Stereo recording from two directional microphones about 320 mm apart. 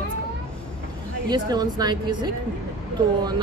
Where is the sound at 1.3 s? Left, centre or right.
Centre.